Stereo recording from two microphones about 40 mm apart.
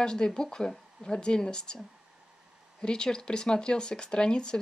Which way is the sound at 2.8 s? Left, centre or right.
Left.